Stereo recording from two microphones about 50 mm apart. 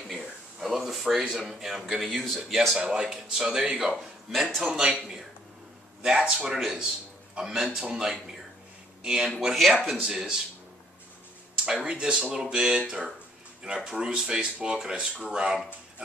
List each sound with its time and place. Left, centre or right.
0.1 s a sound: centre
1.7 s speech: centre
2.8 s speech: centre
6.1 s speech: centre
9.6 s speech: centre
9.8 s speech: centre
11.5 s speech: centre